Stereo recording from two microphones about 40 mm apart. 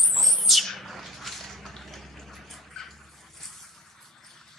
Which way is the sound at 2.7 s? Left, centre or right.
Centre.